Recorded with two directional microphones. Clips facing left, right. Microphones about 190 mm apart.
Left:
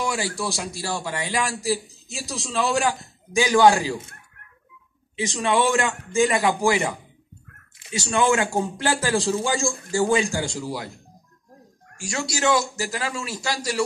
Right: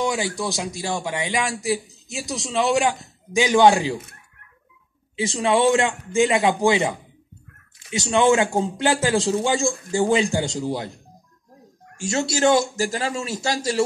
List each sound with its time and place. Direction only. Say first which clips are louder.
0.0 s a man's voice: right 3 dB; 20° right (ahead or behind)
5.2 s a man's voice: right 3 dB; 30° right (ahead or behind)
8.0 s a man's voice: right 3 dB; 25° right (ahead or behind)
12.0 s a man's voice: right 5 dB; 25° right (ahead or behind)